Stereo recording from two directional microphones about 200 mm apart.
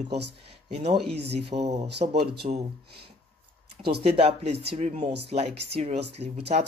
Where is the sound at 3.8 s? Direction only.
30° right (ahead or behind).